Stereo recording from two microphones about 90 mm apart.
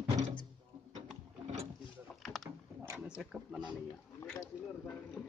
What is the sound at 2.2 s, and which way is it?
Rowboat, centre (ahead or behind).